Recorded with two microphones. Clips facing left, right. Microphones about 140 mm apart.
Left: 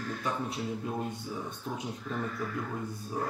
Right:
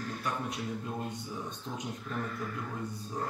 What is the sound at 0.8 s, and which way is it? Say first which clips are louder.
Speech: left 3 dB; 10° left (ahead or behind).